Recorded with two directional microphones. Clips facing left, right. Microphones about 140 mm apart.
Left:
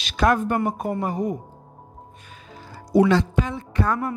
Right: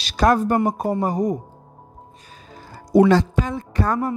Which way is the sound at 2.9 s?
45° right (ahead or behind).